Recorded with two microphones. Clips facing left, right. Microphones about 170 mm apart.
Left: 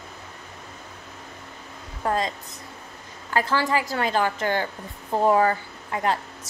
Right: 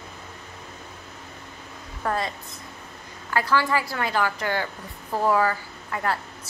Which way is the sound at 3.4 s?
40° left (ahead or behind).